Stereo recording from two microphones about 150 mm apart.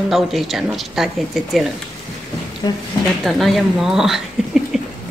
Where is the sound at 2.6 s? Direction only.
25° left (ahead or behind).